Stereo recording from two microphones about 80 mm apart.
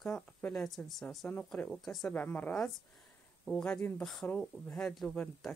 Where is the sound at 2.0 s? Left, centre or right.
Left.